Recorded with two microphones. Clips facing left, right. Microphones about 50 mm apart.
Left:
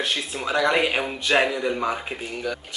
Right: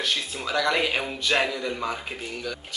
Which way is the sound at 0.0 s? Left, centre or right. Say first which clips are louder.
Left 2 dB; centre.